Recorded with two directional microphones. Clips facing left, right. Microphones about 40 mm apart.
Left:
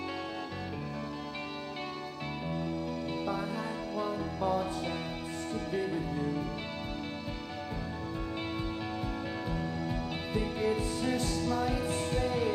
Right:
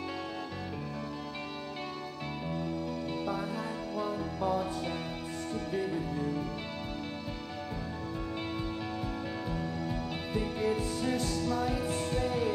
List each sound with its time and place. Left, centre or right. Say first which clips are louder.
4.0 s music: even; left
11.0 s music: even; left